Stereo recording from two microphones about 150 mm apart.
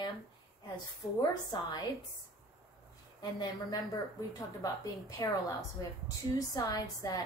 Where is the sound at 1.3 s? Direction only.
25° left (ahead or behind).